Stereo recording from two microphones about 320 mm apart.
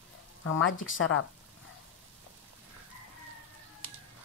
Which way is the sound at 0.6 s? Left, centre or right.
Left.